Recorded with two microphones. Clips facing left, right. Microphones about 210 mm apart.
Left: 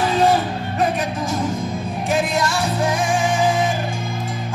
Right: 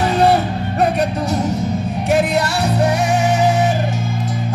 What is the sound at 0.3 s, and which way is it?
Music, 65° right (ahead or behind).